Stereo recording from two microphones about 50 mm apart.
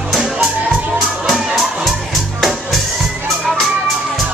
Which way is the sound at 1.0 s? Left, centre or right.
Centre.